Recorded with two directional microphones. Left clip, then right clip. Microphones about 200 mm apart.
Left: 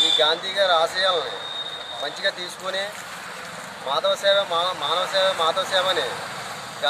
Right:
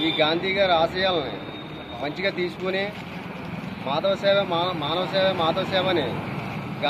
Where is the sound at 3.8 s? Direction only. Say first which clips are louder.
Left 1 dB; 20° left (ahead or behind).